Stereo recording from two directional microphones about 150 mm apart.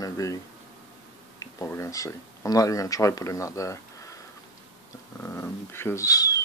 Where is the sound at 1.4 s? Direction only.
20° left (ahead or behind).